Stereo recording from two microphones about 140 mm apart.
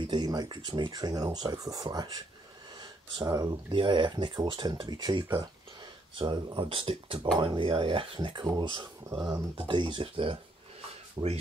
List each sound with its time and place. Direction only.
0.0 s speech: 30° right (ahead or behind)